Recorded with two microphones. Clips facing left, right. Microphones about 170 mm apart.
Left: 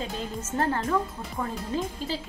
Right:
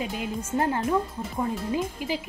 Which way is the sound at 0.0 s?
10° right (ahead or behind).